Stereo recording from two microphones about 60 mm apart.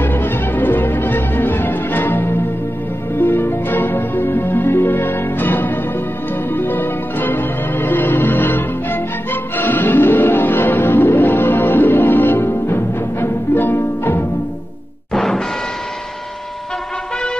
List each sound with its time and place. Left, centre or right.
0.0 s music: left
15.1 s music: centre